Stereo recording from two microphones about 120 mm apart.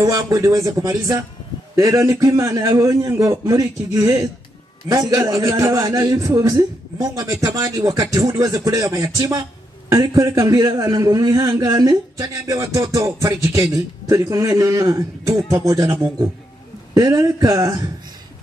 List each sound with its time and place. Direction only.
0.0 s a man's voice: 25° right (ahead or behind)